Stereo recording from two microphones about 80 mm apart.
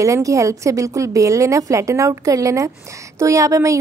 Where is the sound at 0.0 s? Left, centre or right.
Right.